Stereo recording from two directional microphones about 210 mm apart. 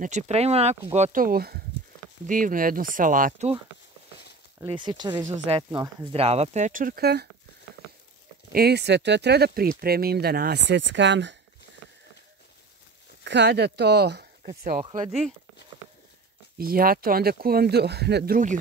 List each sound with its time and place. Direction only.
0.0 s speech: 30° right (ahead or behind)
4.6 s speech: 20° right (ahead or behind); by 7.2 s 50° right (ahead or behind)
8.5 s speech: 50° right (ahead or behind)
13.2 s speech: 55° right (ahead or behind)
16.5 s speech: 45° right (ahead or behind)